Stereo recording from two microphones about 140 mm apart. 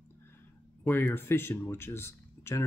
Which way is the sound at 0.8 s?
15° left (ahead or behind).